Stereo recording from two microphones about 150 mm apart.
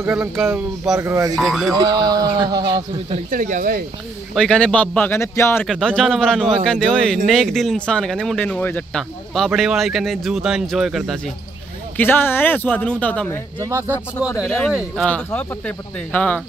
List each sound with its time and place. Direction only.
0.0 s speech: 15° right (ahead or behind)
0.9 s a sound: 20° right (ahead or behind)
1.3 s speech: centre (ahead or behind)
1.8 s a sound: 25° right (ahead or behind)
3.3 s speech: 60° right (ahead or behind)
4.4 s speech: 5° left (ahead or behind)
5.7 s speech: 5° left (ahead or behind)
12.0 s speech: 15° left (ahead or behind)
13.6 s a sound: 20° right (ahead or behind)
14.4 s speech: centre (ahead or behind)
15.0 s speech: 10° left (ahead or behind)